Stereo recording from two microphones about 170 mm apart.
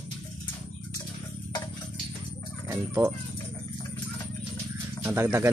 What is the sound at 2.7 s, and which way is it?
Fowl, 15° right (ahead or behind).